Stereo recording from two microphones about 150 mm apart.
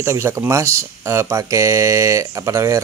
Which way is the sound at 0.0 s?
15° right (ahead or behind).